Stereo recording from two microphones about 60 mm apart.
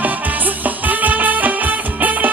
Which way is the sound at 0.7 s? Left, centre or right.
Right.